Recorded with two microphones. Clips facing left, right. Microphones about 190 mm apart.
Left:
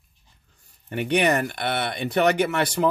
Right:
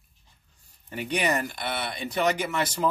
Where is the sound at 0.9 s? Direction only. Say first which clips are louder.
Left 6 dB; 65° left (ahead or behind).